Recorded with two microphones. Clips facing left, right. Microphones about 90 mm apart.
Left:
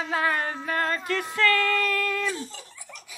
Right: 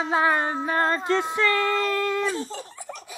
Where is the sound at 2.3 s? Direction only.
35° right (ahead or behind).